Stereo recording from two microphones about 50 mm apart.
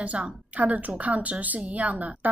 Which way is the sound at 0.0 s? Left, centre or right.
Right.